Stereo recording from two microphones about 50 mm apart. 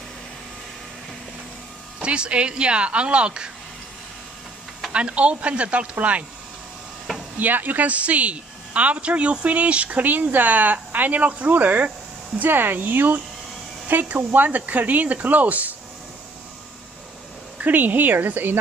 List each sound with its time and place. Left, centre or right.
2.0 s speech: right
4.9 s speech: right
7.3 s a woman's voice: right
17.6 s a woman's voice: right